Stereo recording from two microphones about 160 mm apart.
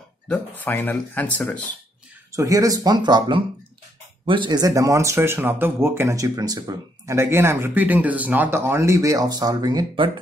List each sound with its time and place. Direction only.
0.3 s speech: 10° left (ahead or behind)
2.3 s speech: 20° right (ahead or behind)